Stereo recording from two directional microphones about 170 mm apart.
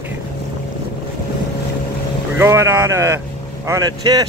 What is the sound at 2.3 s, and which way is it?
Speech, 15° right (ahead or behind).